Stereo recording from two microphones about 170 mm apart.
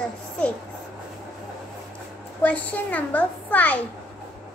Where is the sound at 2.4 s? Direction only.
10° left (ahead or behind).